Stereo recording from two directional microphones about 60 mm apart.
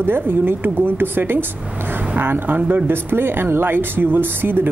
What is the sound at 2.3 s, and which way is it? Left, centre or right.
Speech, right.